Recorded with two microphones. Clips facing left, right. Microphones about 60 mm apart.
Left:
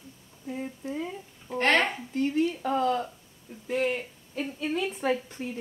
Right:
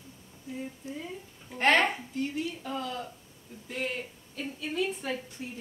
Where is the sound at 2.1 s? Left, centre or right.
Left.